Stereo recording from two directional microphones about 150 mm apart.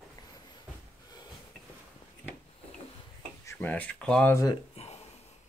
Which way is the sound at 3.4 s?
10° left (ahead or behind).